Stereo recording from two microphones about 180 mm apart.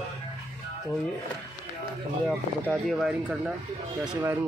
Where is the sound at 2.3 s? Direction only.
5° left (ahead or behind); by 4.5 s 10° right (ahead or behind).